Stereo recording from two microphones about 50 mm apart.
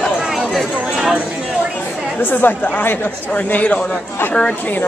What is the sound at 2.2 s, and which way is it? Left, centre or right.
Speech, left.